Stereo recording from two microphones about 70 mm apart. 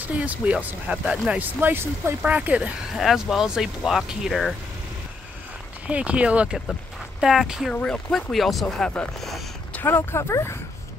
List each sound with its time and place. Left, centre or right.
0.2 s speech: centre
1.4 s speech: right
2.2 s speech: right
3.0 s speech: centre
5.9 s speech: centre
7.7 s speech: centre
8.1 s speech: centre
9.8 s speech: left